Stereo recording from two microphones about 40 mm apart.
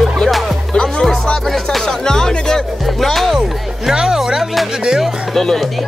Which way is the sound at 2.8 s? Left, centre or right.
Centre.